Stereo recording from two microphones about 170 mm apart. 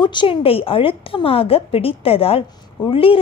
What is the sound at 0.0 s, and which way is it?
A woman's voice, 30° left (ahead or behind).